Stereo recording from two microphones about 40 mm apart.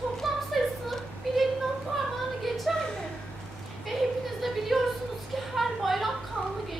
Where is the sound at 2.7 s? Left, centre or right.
Centre.